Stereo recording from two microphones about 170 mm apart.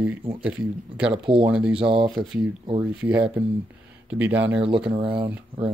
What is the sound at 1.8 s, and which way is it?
Speech, 30° right (ahead or behind).